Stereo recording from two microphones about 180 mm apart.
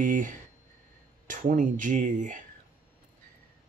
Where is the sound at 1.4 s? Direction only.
45° right (ahead or behind).